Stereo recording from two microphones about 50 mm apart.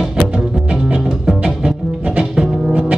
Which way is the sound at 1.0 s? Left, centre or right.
Centre.